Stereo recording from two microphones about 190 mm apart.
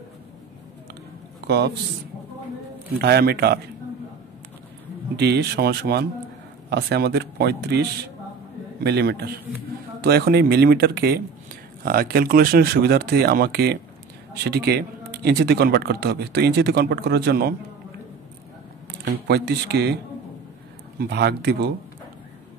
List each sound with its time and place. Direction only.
3.0 s speech: 60° right (ahead or behind)
5.1 s speech: 60° right (ahead or behind)
18.9 s speech: 60° right (ahead or behind)
21.0 s speech: 60° right (ahead or behind)